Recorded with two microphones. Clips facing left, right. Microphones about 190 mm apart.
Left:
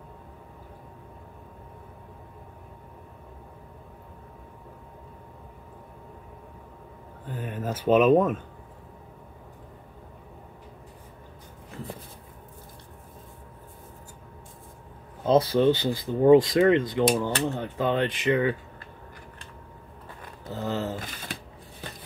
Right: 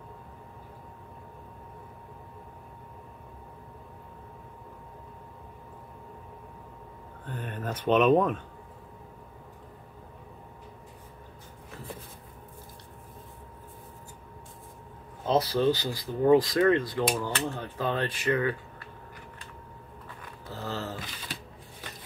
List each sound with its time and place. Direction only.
7.2 s speech: 5° left (ahead or behind)
15.2 s speech: 25° left (ahead or behind)
20.4 s a sound: 20° left (ahead or behind)
21.0 s shuffling cards: 50° left (ahead or behind)